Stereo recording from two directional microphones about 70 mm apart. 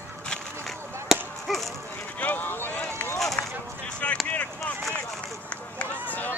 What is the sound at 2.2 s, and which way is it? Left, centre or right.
Run, left.